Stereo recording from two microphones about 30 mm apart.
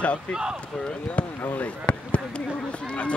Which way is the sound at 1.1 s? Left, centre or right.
Left.